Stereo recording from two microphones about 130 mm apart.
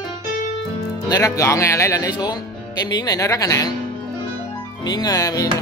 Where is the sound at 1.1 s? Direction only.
25° left (ahead or behind).